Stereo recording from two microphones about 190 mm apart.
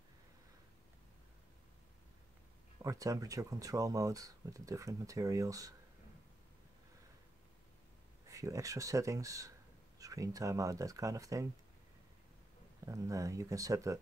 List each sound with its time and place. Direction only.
2.8 s speech: 15° right (ahead or behind)
8.3 s speech: 15° right (ahead or behind)
12.8 s speech: 15° right (ahead or behind)